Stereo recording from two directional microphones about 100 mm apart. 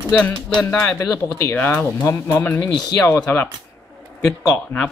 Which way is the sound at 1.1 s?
20° left (ahead or behind).